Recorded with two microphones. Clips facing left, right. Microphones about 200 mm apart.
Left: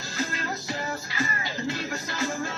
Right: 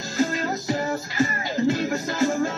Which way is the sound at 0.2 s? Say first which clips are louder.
Right 8 dB; 45° right (ahead or behind).